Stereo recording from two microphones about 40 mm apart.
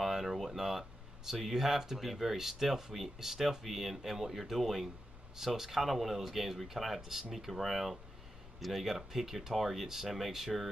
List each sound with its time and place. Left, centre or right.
0.0 s speech: centre